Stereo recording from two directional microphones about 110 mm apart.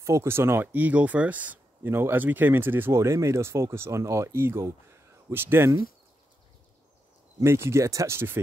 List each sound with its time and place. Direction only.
0.0 s speech: 25° right (ahead or behind)
7.3 s speech: 25° right (ahead or behind)